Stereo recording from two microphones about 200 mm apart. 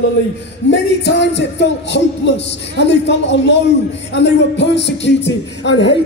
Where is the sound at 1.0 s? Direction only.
60° left (ahead or behind).